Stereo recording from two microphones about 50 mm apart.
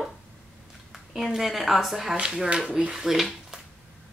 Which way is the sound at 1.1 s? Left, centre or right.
Centre.